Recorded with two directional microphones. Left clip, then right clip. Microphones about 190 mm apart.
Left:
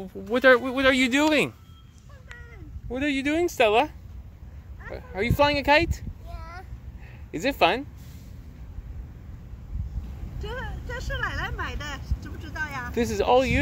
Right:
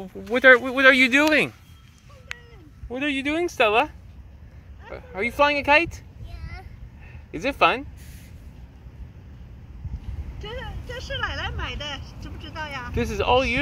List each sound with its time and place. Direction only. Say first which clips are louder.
0.0 s speech: right 3 dB; 5° left (ahead or behind)
2.3 s a sound: right 8 dB; 15° right (ahead or behind)
2.9 s speech: right 1 dB; centre (ahead or behind)
10.4 s speech: even; 25° left (ahead or behind)
12.9 s speech: even; centre (ahead or behind)